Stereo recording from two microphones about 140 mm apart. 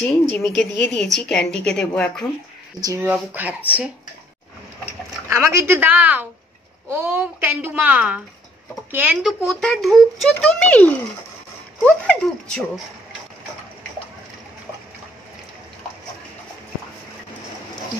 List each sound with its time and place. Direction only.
0.4 s a woman's voice: 5° left (ahead or behind)
2.8 s speech: 25° right (ahead or behind)
3.3 s a child's voice: 10° right (ahead or behind)
5.3 s a child's voice: 20° right (ahead or behind)
9.2 s a woman's voice: 5° left (ahead or behind)